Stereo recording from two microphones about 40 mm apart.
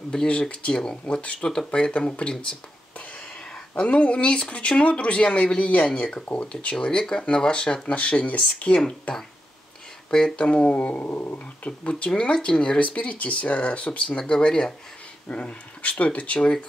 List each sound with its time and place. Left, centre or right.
0.1 s speech: left
3.7 s speech: left
5.9 s speech: left
10.3 s speech: left
11.1 s speech: left
12.7 s speech: left
14.1 s speech: centre
15.2 s speech: left